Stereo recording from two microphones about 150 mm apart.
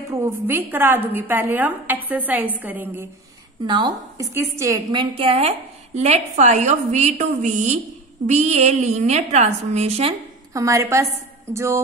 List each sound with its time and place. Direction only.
0.1 s speech: 15° right (ahead or behind)
3.6 s a woman's voice: 30° right (ahead or behind)
4.3 s a woman's voice: 15° right (ahead or behind)
5.1 s a woman's voice: 40° right (ahead or behind)
10.5 s a woman's voice: 20° right (ahead or behind)